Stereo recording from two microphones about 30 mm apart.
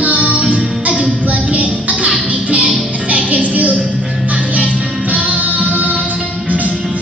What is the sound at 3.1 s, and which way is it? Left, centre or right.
Music, right.